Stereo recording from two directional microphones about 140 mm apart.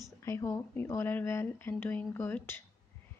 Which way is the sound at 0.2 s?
20° left (ahead or behind).